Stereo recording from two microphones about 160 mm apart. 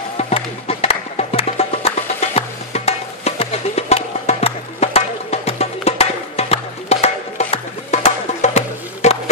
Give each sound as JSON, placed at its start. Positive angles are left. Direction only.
{"t": 0.2, "sound": "music", "side_deg": 40}